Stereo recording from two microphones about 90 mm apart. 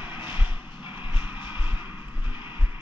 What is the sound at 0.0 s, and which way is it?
Vehicle, 20° right (ahead or behind).